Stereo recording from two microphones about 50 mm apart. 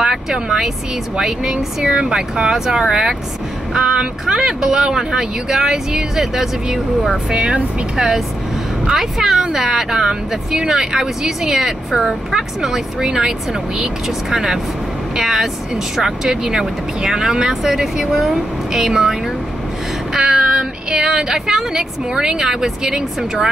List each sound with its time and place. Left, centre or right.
0.0 s vehicle: centre
1.1 s speech: centre
7.2 s speech: right
7.9 s speech: centre
15.1 s speech: centre